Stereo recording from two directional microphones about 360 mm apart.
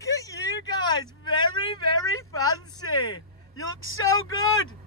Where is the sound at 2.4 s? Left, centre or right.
Left.